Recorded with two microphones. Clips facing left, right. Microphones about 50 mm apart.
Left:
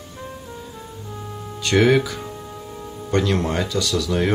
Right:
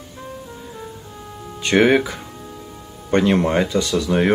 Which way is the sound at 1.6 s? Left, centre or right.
Right.